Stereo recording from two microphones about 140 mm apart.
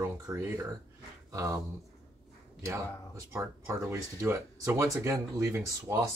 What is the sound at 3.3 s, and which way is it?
Speech, 20° right (ahead or behind).